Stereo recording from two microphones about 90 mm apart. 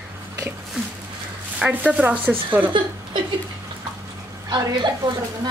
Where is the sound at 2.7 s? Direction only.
65° right (ahead or behind).